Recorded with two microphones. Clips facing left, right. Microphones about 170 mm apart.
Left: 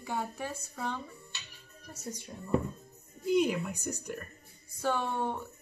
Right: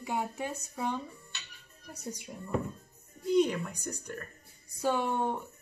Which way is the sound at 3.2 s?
5° left (ahead or behind).